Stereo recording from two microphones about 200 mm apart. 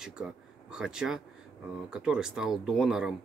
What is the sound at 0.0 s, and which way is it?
Speech, 5° right (ahead or behind).